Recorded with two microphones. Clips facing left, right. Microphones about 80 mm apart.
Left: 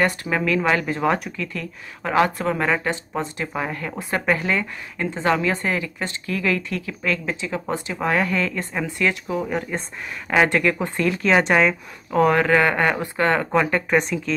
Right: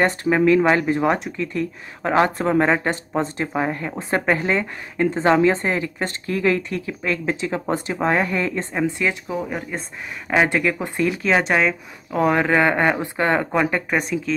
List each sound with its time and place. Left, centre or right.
0.0 s a woman's voice: right
7.2 s a woman's voice: right
8.0 s a woman's voice: right
9.5 s speech: centre
11.3 s speech: centre
12.2 s speech: centre